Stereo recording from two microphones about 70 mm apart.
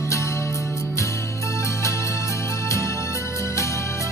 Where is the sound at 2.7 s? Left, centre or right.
Left.